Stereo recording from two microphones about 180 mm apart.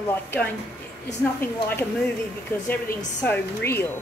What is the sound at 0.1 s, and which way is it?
A woman's voice, 10° left (ahead or behind).